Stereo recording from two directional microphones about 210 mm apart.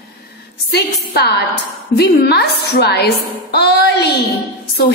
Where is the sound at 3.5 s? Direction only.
50° left (ahead or behind).